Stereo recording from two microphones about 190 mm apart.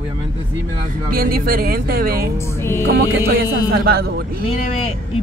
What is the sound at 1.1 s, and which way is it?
Speech, 50° right (ahead or behind).